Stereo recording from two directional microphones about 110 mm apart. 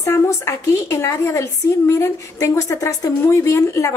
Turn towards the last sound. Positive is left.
turn(degrees=30)  # may be behind; listen again after turning